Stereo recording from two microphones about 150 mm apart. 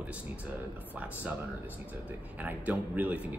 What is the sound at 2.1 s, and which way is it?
A man's voice, 10° right (ahead or behind).